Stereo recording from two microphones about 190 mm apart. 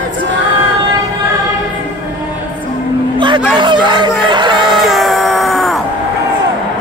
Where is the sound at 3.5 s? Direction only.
25° right (ahead or behind).